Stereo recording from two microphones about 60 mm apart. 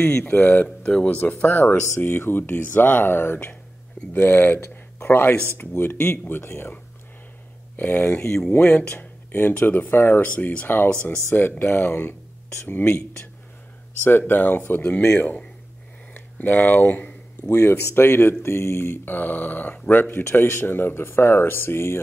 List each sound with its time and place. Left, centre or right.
0.0 s speech: centre
0.3 s speech: left
0.7 s speech: centre
1.0 s speech: left
7.7 s speech: left
8.6 s speech: left
9.3 s speech: left
14.0 s speech: left
14.8 s speech: left
17.5 s speech: left
20.2 s speech: left